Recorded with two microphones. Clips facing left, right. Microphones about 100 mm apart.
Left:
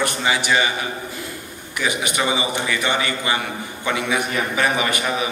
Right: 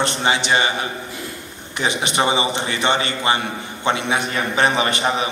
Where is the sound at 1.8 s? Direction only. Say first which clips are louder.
Right 2 dB; 25° right (ahead or behind).